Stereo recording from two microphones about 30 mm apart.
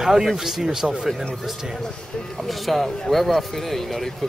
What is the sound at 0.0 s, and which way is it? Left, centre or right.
Speech, centre.